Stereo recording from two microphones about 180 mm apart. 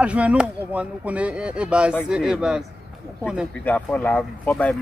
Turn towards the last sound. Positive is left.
turn(degrees=5)  # may be behind; listen again after turning